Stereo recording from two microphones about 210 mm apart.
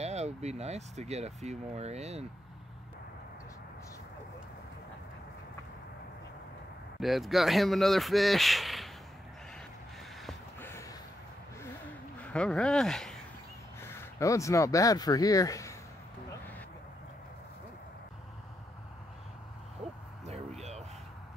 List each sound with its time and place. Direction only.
0.0 s speech: 30° right (ahead or behind)
7.0 s speech: centre (ahead or behind)
10.2 s a sound: 10° left (ahead or behind)
12.2 s speech: 5° left (ahead or behind)
19.8 s owl: 30° right (ahead or behind)